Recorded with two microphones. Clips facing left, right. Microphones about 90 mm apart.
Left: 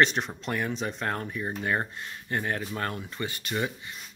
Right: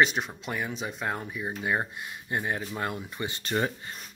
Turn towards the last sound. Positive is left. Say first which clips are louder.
# right 2 dB
turn(degrees=-35)  # may be behind; listen again after turning